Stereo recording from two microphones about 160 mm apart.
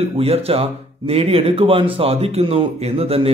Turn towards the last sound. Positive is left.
turn(degrees=-35)  # may be behind; listen again after turning